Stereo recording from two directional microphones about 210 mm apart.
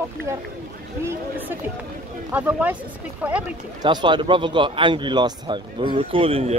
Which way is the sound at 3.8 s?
20° right (ahead or behind).